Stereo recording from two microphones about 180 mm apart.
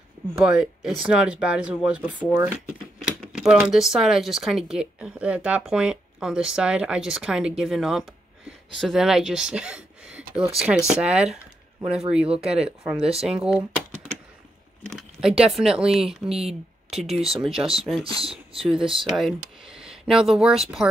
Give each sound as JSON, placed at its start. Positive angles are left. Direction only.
{"t": 0.4, "sound": "speech", "side_deg": 0}
{"t": 12.3, "sound": "speech", "side_deg": -35}
{"t": 12.5, "sound": "speech", "side_deg": -5}
{"t": 14.9, "sound": "speech", "side_deg": 0}
{"t": 18.2, "sound": "speech", "side_deg": -30}
{"t": 18.6, "sound": "speech", "side_deg": -5}